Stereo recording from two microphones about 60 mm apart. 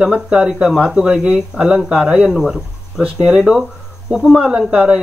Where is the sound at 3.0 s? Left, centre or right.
Centre.